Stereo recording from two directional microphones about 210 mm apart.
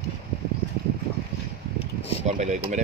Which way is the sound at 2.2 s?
35° right (ahead or behind).